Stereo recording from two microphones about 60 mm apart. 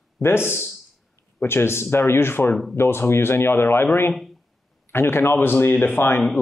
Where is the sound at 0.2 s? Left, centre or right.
Left.